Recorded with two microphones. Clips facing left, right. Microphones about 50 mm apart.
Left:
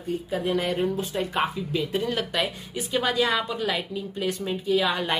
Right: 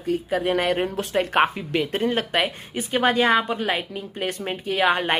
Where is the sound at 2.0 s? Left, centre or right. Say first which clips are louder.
Right 4 dB; right.